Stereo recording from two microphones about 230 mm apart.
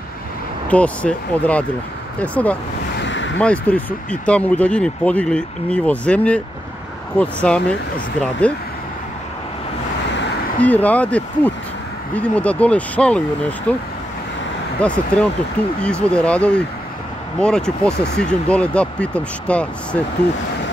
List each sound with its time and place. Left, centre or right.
0.7 s speech: centre
3.0 s a sound: left
3.3 s speech: centre
7.4 s speech: centre
10.6 s speech: centre
14.8 s speech: centre